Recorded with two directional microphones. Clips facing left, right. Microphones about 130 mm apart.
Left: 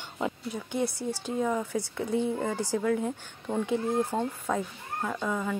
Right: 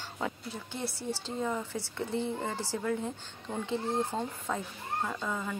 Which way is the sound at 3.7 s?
15° left (ahead or behind).